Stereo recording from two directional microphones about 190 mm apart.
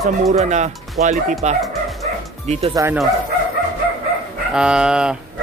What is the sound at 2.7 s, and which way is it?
Speech, 15° right (ahead or behind).